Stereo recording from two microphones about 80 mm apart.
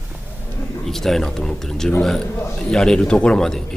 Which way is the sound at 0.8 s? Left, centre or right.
Centre.